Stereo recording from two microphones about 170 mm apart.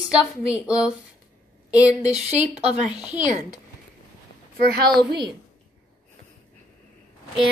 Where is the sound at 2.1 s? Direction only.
40° right (ahead or behind).